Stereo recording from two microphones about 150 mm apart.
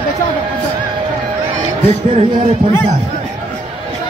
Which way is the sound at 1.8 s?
45° right (ahead or behind).